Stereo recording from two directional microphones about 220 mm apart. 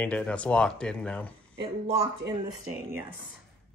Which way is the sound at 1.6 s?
25° right (ahead or behind).